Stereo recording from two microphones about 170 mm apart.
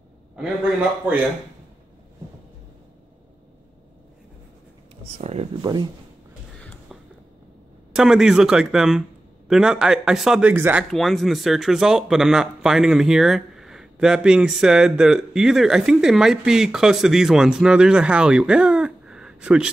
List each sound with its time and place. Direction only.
0.4 s speech: 5° right (ahead or behind)
5.2 s speech: 35° right (ahead or behind)
6.6 s music: 5° left (ahead or behind)
7.9 s speech: 5° right (ahead or behind)
10.9 s speech: centre (ahead or behind)